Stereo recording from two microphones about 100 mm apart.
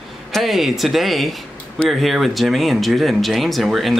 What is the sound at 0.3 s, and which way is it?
Speech, centre (ahead or behind).